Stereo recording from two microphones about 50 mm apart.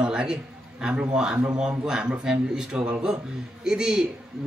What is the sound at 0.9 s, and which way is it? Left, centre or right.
A man's voice, centre.